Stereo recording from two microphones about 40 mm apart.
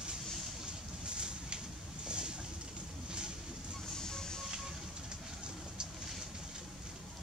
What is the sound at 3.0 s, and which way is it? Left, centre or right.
Vehicle, centre.